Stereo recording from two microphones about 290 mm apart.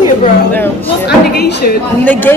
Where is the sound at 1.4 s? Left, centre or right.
Left.